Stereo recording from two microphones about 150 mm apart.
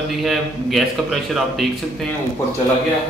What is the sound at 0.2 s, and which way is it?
Speech, centre (ahead or behind).